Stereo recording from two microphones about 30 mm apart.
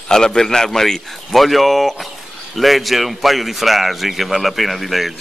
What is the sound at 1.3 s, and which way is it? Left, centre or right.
A man's voice, centre.